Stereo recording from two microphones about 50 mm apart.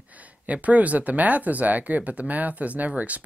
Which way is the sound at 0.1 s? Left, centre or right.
Right.